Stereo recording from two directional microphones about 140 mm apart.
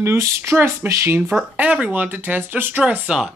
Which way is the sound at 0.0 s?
15° right (ahead or behind).